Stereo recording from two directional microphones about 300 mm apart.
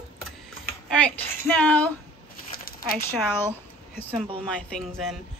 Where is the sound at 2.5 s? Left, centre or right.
Left.